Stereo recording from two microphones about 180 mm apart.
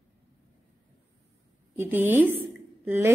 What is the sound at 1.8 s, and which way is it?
A woman's voice, 10° right (ahead or behind).